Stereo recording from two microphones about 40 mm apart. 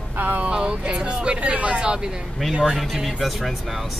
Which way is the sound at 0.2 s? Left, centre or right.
Right.